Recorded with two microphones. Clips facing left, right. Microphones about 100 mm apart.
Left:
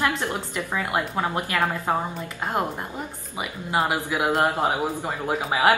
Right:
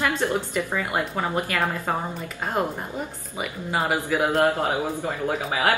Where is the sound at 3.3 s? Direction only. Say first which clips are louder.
Left 1 dB; 10° left (ahead or behind).